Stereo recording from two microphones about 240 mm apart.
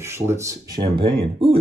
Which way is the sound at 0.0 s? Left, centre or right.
Centre.